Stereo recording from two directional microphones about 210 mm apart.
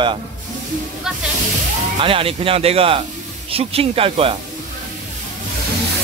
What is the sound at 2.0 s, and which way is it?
Speech, 25° right (ahead or behind).